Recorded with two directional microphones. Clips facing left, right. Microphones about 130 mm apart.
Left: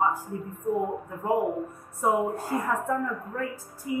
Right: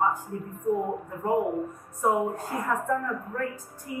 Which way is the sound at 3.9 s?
5° left (ahead or behind).